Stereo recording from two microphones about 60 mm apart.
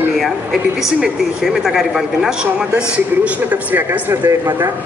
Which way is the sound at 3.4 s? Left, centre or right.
Right.